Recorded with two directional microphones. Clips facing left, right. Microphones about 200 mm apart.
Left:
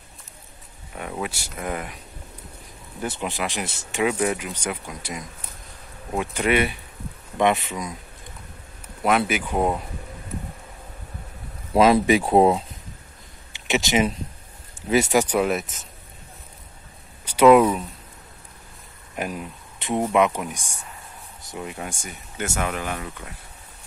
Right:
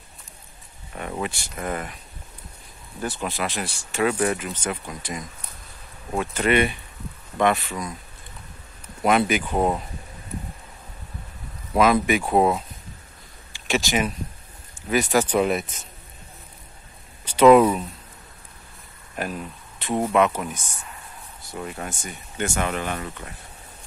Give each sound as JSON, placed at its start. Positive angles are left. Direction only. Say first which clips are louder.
{"t": 0.9, "sound": "speech", "louder": "right 1 dB", "side_deg": 5}
{"t": 3.2, "sound": "speech", "louder": "even", "side_deg": 15}
{"t": 7.3, "sound": "speech", "louder": "left 1 dB", "side_deg": 20}
{"t": 9.0, "sound": "speech", "louder": "right 1 dB", "side_deg": 0}
{"t": 11.7, "sound": "speech", "louder": "left 3 dB", "side_deg": 30}
{"t": 13.5, "sound": "a sound", "louder": "left 1 dB", "side_deg": 20}
{"t": 14.8, "sound": "speech", "louder": "left 2 dB", "side_deg": 25}
{"t": 15.2, "sound": "speech", "louder": "right 1 dB", "side_deg": 5}
{"t": 17.2, "sound": "a sound", "louder": "even", "side_deg": 10}
{"t": 19.1, "sound": "speech", "louder": "even", "side_deg": 15}